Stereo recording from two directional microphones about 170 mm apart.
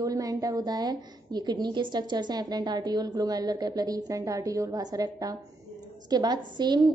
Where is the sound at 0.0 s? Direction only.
20° right (ahead or behind).